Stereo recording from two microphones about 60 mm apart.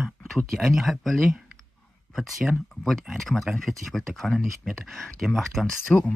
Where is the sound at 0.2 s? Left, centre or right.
Centre.